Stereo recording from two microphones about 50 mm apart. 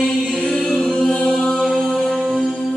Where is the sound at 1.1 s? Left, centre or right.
Centre.